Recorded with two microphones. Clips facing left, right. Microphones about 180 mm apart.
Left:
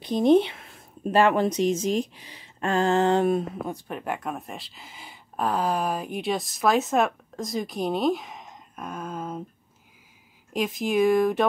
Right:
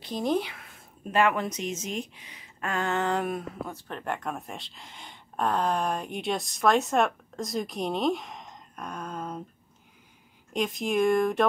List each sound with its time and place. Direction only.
0.0 s speech: 20° left (ahead or behind); by 9.4 s 5° left (ahead or behind)
10.5 s speech: centre (ahead or behind)